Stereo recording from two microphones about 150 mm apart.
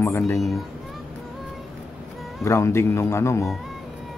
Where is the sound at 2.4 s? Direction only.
20° left (ahead or behind).